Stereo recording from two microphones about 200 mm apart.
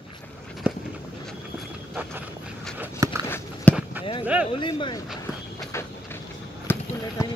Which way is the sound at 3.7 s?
5° left (ahead or behind).